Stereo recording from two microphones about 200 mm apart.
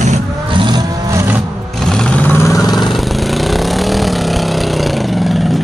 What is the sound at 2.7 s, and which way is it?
Vehicle, centre (ahead or behind).